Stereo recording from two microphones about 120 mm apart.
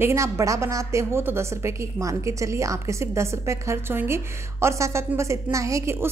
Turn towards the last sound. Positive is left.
turn(degrees=-25)  # may be behind; listen again after turning